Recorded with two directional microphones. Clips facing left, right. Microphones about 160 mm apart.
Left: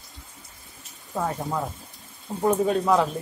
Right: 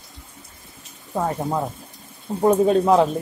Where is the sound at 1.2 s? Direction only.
35° right (ahead or behind).